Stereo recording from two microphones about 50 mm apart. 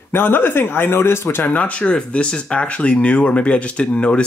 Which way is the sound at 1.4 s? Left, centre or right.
Left.